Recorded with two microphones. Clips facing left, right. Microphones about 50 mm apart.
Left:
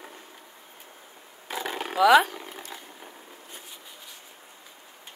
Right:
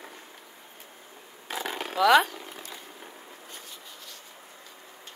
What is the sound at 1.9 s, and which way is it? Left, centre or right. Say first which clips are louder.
Speech: left 2 dB; centre.